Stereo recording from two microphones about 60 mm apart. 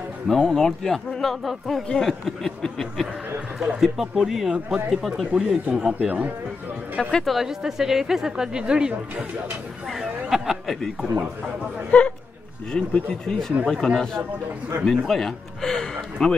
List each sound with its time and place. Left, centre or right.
0.3 s speech: centre
3.5 s speech: centre
5.9 s speech: right
7.0 s speech: centre
7.3 s speech: centre
9.8 s a sound: centre
11.9 s a man's voice: left
13.2 s speech: centre